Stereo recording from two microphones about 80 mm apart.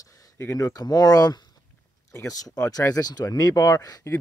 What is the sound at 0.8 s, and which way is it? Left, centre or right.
Speech, left.